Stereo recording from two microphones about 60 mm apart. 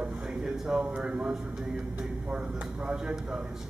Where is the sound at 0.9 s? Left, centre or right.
Centre.